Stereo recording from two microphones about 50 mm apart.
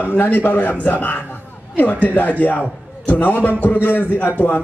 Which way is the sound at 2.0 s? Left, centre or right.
Left.